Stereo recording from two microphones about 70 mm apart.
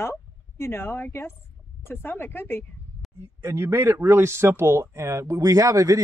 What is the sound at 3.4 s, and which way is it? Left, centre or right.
Speech, right.